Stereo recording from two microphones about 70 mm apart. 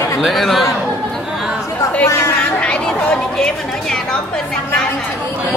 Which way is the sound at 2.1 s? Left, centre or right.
Left.